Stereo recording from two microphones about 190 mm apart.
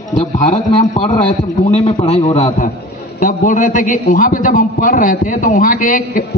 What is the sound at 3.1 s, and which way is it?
A man's voice, 45° left (ahead or behind).